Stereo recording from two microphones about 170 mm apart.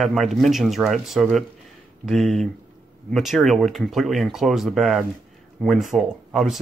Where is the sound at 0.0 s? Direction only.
Centre (ahead or behind).